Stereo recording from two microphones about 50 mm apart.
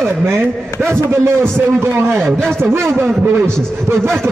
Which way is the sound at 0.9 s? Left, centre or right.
Right.